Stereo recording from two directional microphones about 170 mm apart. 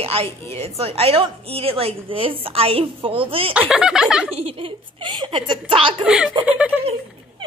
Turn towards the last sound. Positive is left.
turn(degrees=-10)  # may be behind; listen again after turning